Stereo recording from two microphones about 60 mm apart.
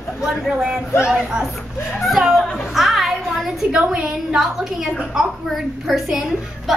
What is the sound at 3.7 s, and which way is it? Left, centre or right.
A woman's voice, centre.